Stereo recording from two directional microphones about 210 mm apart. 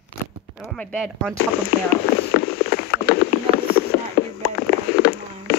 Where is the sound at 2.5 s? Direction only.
50° left (ahead or behind).